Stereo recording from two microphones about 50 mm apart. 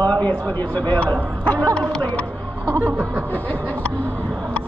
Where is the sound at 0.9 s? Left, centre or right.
Left.